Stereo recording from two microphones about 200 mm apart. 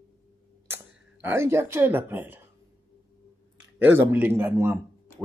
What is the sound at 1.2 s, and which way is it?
Speech, 10° right (ahead or behind).